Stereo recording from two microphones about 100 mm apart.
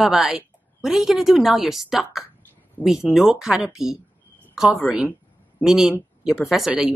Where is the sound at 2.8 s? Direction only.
15° left (ahead or behind).